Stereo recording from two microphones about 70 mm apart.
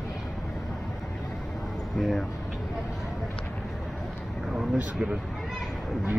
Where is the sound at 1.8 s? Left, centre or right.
Centre.